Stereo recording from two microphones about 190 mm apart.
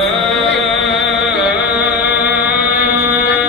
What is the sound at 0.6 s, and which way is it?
Music, centre (ahead or behind).